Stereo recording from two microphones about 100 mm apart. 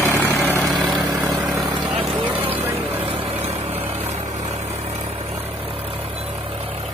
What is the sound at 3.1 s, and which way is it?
Vehicle, 65° right (ahead or behind).